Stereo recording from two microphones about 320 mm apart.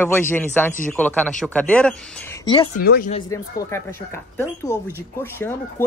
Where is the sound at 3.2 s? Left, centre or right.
Centre.